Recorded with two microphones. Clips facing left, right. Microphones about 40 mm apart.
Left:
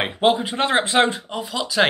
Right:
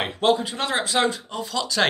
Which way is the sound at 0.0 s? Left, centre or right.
Left.